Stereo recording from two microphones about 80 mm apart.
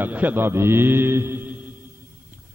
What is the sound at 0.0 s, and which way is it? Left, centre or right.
A man's voice, right.